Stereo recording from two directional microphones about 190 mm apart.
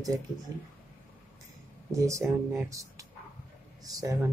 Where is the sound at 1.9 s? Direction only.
15° right (ahead or behind).